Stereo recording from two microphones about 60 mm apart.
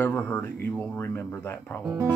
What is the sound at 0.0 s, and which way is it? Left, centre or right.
Speech, left.